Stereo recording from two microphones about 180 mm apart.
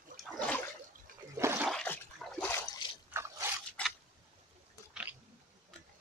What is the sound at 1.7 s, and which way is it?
Water, 5° left (ahead or behind).